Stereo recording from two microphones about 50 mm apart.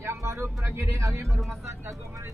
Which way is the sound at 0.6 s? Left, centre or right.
Right.